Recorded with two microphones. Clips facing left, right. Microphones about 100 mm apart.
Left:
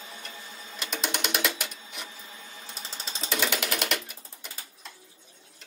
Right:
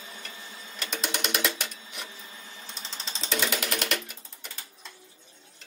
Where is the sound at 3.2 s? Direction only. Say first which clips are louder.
Even; 5° left (ahead or behind).